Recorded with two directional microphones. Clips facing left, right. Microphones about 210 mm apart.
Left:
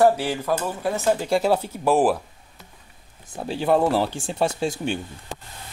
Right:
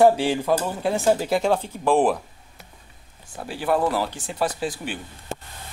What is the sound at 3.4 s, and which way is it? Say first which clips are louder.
Speech: left 3 dB; 25° left (ahead or behind).